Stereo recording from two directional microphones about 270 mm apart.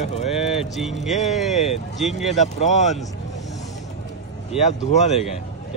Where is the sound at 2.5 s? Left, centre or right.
Left.